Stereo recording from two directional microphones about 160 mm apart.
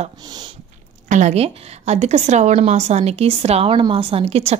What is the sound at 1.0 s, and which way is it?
A woman's voice, 50° right (ahead or behind).